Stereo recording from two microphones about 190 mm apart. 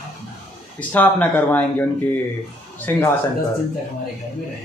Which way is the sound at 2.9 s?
10° left (ahead or behind).